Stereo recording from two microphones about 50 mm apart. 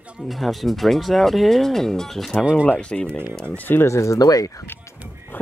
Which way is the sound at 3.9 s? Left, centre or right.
Left.